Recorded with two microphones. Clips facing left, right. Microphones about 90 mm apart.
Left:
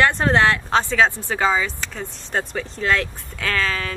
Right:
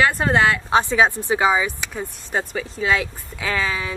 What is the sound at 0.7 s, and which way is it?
Speech, 15° right (ahead or behind).